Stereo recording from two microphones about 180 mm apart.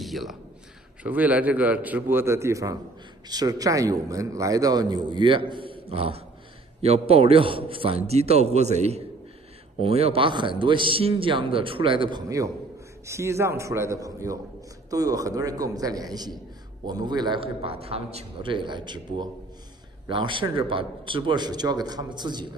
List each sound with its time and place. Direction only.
0.0 s a man's voice: centre (ahead or behind); by 22.5 s 25° right (ahead or behind)